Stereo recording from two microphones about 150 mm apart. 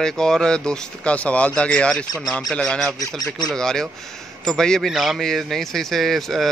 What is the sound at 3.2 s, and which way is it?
Speech, 25° left (ahead or behind).